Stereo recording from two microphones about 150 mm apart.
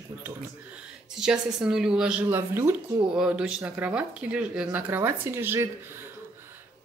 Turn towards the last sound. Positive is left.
turn(degrees=-15)  # may be behind; listen again after turning